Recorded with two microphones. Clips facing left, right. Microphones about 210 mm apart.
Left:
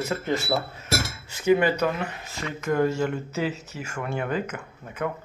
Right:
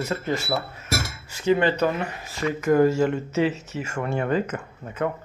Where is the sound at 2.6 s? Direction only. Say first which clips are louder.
Right 5 dB; 5° right (ahead or behind).